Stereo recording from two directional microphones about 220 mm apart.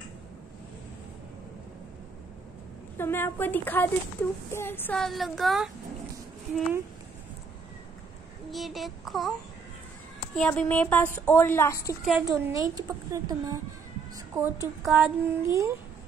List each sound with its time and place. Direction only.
3.0 s speech: 10° left (ahead or behind)
8.5 s child singing: centre (ahead or behind)
10.3 s speech: 5° left (ahead or behind)
12.3 s a woman's voice: 15° right (ahead or behind)
14.9 s a woman's voice: 5° right (ahead or behind)